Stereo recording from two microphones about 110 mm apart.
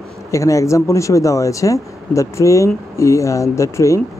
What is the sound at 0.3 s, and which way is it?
Speech, 30° left (ahead or behind).